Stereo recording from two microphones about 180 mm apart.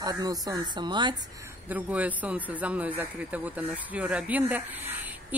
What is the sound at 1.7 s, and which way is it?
Speech, 10° right (ahead or behind).